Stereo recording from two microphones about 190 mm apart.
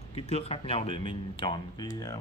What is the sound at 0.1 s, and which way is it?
Speech, 35° left (ahead or behind).